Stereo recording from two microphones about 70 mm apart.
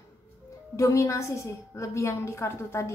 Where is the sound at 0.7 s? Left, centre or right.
Left.